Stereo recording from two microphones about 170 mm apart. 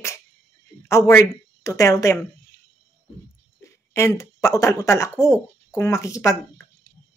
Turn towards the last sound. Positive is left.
turn(degrees=20)  # may be behind; listen again after turning